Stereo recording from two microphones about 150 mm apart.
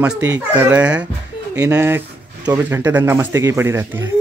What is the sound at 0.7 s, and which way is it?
A child's voice, 10° right (ahead or behind).